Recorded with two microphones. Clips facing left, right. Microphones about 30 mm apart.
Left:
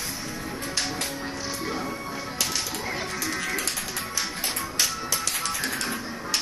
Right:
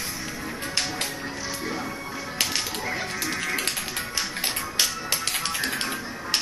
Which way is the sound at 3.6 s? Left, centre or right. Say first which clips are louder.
Right 1 dB; right.